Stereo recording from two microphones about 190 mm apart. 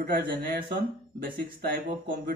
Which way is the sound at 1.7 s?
50° right (ahead or behind).